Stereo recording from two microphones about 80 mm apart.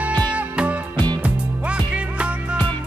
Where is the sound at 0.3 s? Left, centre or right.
Centre.